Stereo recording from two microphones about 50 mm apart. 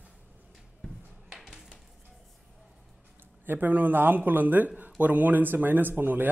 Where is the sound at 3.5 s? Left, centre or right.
Right.